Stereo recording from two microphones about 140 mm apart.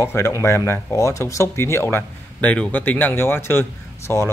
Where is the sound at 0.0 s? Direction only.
20° left (ahead or behind).